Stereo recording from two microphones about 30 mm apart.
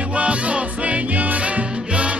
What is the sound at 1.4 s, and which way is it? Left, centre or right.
Music, right.